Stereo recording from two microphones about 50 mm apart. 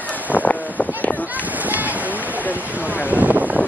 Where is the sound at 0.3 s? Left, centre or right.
Left.